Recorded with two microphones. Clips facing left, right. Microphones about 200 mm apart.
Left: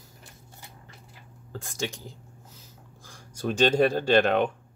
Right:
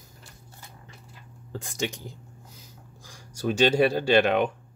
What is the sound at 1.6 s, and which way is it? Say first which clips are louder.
Speech: right 2 dB; 15° right (ahead or behind).